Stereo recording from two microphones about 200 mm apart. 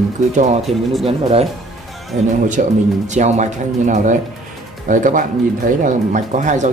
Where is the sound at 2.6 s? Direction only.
40° right (ahead or behind).